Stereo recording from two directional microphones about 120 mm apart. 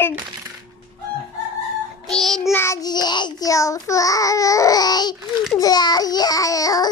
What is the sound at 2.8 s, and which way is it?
Child singing, 35° left (ahead or behind).